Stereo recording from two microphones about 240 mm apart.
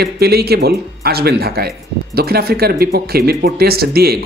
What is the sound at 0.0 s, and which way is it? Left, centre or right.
Speech, right.